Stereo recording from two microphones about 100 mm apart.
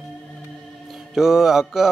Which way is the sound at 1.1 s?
5° right (ahead or behind).